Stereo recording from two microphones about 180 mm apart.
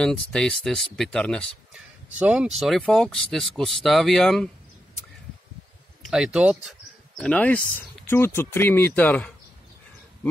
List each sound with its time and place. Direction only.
0.0 s speech: 5° left (ahead or behind)
2.0 s speech: 10° right (ahead or behind)
6.0 s speech: 5° right (ahead or behind)
7.2 s speech: 5° left (ahead or behind)